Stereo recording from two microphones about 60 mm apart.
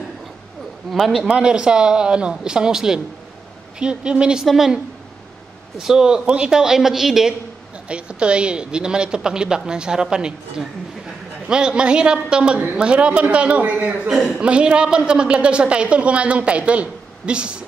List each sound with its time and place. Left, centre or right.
0.9 s a woman's voice: centre
1.2 s a woman's voice: centre
5.8 s a woman's voice: centre
7.9 s a woman's voice: centre
11.4 s a woman's voice: centre
14.4 s a woman's voice: centre